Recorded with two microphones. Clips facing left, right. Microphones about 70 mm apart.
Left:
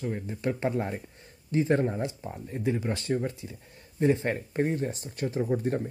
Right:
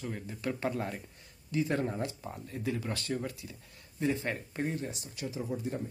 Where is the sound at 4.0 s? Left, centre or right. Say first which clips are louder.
Left 7 dB; left.